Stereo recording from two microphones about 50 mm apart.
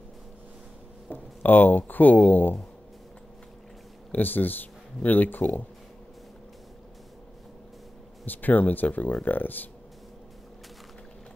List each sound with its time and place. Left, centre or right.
1.1 s speech: left
4.1 s speech: left
8.3 s speech: left